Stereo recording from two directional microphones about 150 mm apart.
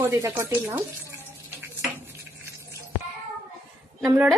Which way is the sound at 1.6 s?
15° right (ahead or behind).